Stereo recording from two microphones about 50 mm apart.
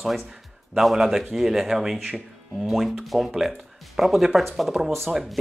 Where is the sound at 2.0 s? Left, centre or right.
Centre.